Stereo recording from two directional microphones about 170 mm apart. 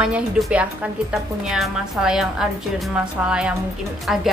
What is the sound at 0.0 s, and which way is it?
A woman's voice, 5° right (ahead or behind).